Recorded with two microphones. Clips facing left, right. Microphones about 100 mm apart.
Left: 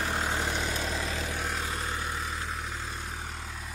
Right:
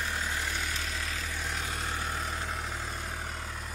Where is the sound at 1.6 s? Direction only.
30° left (ahead or behind).